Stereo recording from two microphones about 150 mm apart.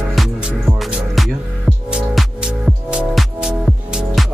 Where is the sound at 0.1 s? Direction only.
5° right (ahead or behind).